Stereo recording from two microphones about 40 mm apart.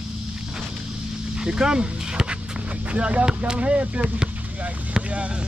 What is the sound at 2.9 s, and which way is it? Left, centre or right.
Speech, right.